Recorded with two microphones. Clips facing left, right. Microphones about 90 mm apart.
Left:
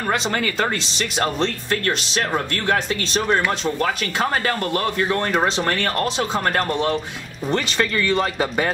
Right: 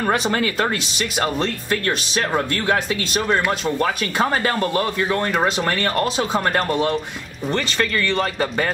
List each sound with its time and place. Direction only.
0.0 s speech: 15° right (ahead or behind)
5.0 s speech: 5° right (ahead or behind)
6.6 s speech: centre (ahead or behind)